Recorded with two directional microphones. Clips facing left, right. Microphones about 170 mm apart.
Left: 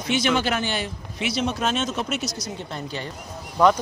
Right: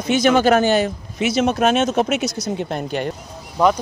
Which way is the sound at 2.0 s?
75° right (ahead or behind).